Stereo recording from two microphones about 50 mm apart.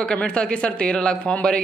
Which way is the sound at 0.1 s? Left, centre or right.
Left.